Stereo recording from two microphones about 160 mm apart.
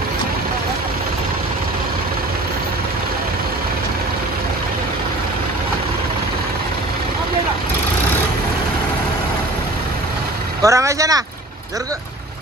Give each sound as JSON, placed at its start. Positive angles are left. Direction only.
{"t": 10.6, "sound": "vehicle", "side_deg": -20}